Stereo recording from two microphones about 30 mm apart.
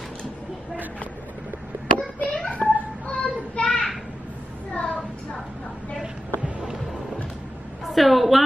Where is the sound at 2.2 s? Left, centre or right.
Left.